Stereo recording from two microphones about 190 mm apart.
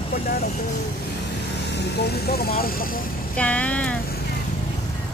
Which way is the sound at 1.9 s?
60° left (ahead or behind).